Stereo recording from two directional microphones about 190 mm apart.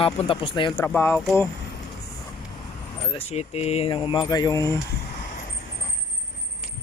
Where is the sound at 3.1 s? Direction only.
35° left (ahead or behind).